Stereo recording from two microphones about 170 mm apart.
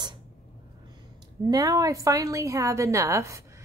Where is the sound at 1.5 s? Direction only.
20° right (ahead or behind).